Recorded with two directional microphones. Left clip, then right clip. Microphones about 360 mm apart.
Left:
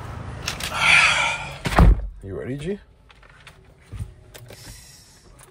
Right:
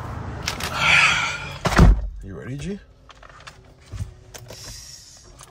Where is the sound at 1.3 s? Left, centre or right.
Centre.